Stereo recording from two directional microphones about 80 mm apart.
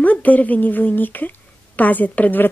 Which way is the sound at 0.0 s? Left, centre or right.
Centre.